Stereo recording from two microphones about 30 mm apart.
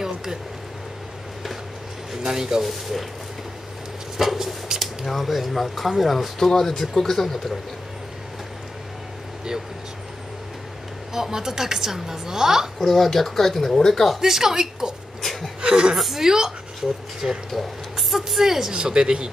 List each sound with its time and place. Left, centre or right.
0.0 s a sound: centre
2.2 s speech: centre
2.6 s speech: centre
4.2 s a woman's voice: centre
4.7 s a sound: right
5.0 s speech: centre
11.1 s a woman's voice: centre
12.7 s speech: centre
14.2 s a woman's voice: centre
15.2 s a sound: centre
15.7 s a woman's voice: right
17.5 s a sound: centre
18.1 s a woman's voice: centre
18.7 s speech: right